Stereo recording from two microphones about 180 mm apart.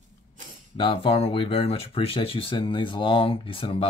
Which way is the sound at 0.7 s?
30° left (ahead or behind).